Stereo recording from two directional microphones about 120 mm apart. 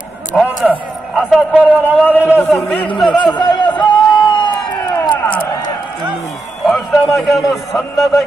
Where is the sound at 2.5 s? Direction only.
Centre (ahead or behind).